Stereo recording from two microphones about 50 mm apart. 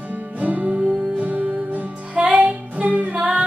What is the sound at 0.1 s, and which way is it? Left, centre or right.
Music, right.